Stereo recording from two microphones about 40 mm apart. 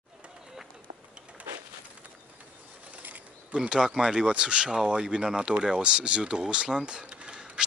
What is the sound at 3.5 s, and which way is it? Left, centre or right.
Speech, right.